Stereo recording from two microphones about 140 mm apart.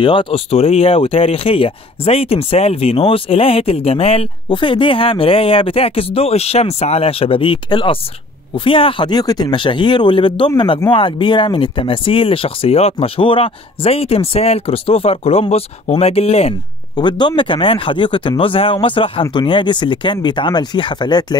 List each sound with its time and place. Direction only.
0.0 s speech: 35° left (ahead or behind)
16.9 s speech: 30° left (ahead or behind)